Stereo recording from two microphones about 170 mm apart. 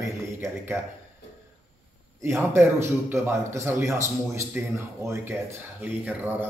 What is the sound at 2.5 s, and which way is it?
Speech, 15° right (ahead or behind).